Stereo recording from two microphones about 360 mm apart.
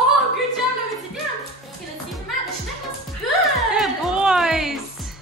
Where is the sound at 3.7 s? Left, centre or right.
Centre.